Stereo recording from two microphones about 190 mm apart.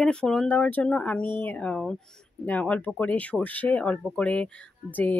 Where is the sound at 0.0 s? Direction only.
5° left (ahead or behind).